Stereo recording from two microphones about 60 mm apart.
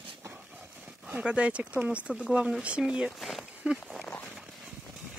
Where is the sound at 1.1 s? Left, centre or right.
Centre.